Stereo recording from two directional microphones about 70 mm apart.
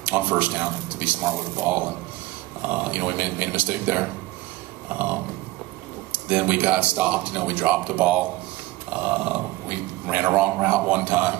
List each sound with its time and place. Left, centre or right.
0.0 s speech: right